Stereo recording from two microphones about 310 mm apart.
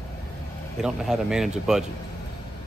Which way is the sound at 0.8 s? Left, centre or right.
Centre.